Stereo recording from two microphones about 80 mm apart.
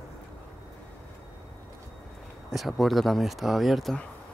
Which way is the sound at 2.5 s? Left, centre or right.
Centre.